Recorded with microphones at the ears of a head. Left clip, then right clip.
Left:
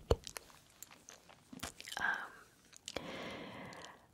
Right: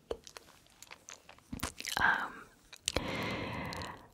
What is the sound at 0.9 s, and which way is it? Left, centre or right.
Biting, right.